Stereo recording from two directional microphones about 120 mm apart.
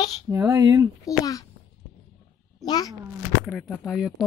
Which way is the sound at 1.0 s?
30° left (ahead or behind).